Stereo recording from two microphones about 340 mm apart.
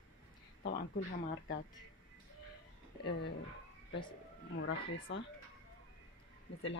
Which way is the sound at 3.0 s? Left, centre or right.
Left.